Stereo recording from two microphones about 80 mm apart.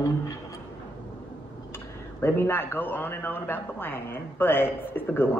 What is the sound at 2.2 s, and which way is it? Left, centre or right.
A man's voice, left.